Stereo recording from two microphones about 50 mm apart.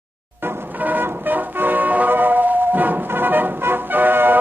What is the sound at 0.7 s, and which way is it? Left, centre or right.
Vehicle, right.